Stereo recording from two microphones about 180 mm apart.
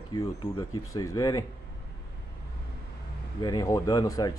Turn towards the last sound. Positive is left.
turn(degrees=20)  # may be behind; listen again after turning